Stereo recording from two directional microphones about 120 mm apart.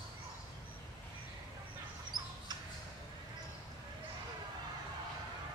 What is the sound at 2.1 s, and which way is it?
Bird, 35° right (ahead or behind).